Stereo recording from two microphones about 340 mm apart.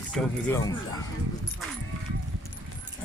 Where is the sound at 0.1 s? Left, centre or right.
Centre.